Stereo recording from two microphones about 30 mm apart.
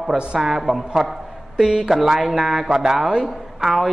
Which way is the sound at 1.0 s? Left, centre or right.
Centre.